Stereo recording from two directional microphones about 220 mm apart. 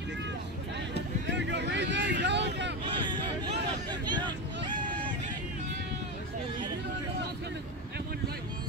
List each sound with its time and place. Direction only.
1.3 s vehicle: 50° right (ahead or behind)
4.0 s vehicle: 20° right (ahead or behind)